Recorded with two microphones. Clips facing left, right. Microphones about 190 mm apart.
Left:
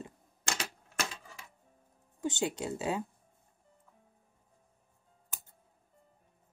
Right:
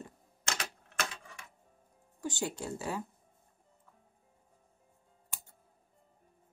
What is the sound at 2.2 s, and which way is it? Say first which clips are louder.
Speech: left 3 dB; 20° left (ahead or behind).